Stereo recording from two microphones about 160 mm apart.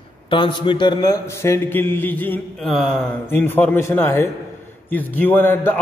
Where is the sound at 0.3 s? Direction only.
30° left (ahead or behind); by 3.1 s 5° left (ahead or behind).